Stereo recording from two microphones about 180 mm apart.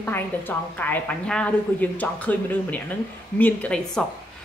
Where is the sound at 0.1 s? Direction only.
10° left (ahead or behind).